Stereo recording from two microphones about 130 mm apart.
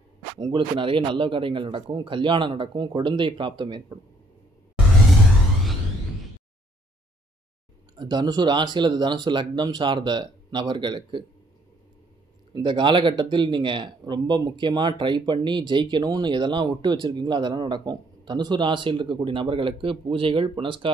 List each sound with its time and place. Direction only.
0.4 s speech: 40° right (ahead or behind)
8.0 s speech: 35° right (ahead or behind)
12.5 s speech: 35° right (ahead or behind)